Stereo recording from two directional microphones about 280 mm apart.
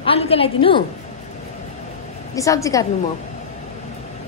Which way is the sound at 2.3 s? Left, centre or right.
Centre.